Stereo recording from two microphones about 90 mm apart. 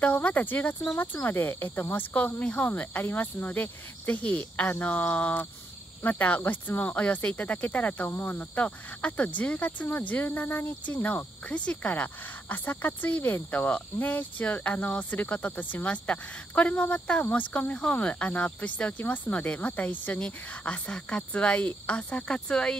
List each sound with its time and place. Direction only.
0.0 s speech: 15° left (ahead or behind)